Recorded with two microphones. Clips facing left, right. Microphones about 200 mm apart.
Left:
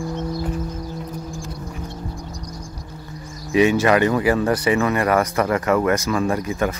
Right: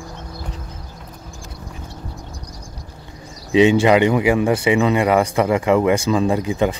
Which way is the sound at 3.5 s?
20° right (ahead or behind).